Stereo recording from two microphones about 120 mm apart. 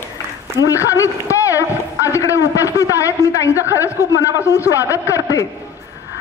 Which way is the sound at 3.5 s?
15° right (ahead or behind).